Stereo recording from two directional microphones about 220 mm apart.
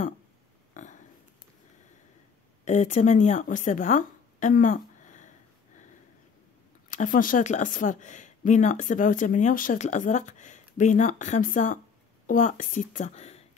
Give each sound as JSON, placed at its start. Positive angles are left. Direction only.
{"t": 0.8, "sound": "a sound", "side_deg": 35}
{"t": 2.6, "sound": "speech", "side_deg": 30}
{"t": 6.9, "sound": "speech", "side_deg": 35}